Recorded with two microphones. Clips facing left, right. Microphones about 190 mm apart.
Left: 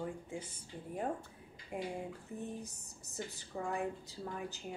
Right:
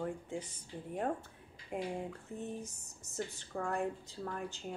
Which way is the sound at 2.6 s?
35° left (ahead or behind).